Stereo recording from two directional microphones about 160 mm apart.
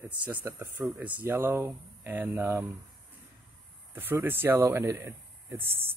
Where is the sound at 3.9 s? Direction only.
15° right (ahead or behind).